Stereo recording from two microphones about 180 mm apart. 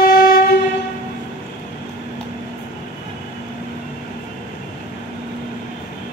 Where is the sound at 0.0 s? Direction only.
55° left (ahead or behind).